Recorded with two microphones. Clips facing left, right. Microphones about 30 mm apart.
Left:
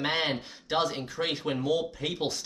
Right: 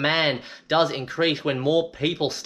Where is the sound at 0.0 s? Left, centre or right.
Right.